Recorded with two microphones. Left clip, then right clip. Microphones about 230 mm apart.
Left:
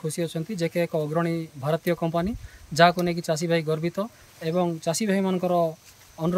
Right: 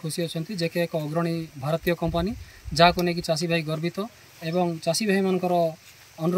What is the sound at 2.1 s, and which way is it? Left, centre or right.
Speech, left.